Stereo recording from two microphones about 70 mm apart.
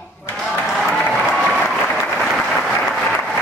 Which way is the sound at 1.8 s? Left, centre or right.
Centre.